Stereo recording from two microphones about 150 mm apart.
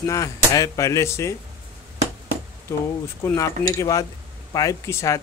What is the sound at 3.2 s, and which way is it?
Speech, 15° left (ahead or behind).